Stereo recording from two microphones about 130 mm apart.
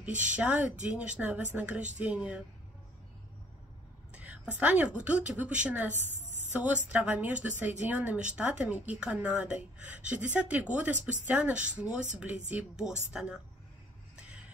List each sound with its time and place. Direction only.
0.2 s a woman's voice: 10° right (ahead or behind)
4.1 s a woman's voice: 10° right (ahead or behind)
5.9 s a sound: 15° left (ahead or behind)
6.5 s a woman's voice: 10° right (ahead or behind)